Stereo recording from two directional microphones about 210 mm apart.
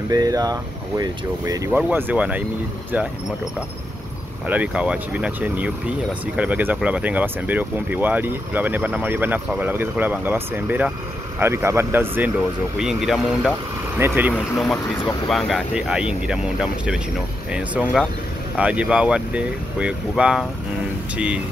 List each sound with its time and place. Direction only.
0.1 s speech: 15° right (ahead or behind)
4.5 s speech: 5° right (ahead or behind)
15.2 s speech: centre (ahead or behind)